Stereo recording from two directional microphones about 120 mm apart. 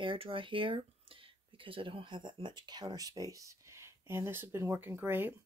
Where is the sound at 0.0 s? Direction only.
45° right (ahead or behind).